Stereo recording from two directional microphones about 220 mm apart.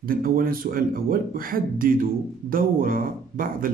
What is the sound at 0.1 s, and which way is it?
Speech, 40° right (ahead or behind).